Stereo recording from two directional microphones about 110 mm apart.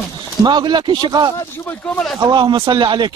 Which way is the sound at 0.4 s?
40° right (ahead or behind).